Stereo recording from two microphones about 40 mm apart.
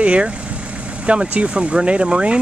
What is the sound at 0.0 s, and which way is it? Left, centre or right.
Speech, right.